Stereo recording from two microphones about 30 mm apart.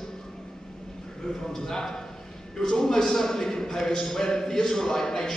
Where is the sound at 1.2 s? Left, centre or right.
Left.